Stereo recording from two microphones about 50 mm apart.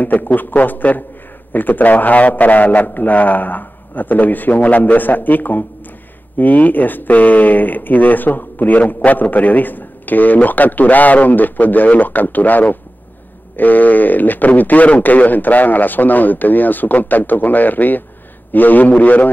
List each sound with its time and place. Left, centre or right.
0.0 s speech: left